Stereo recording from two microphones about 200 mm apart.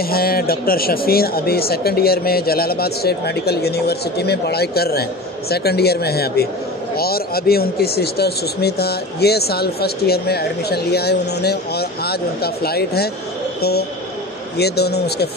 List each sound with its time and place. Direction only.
0.0 s speech: 50° left (ahead or behind)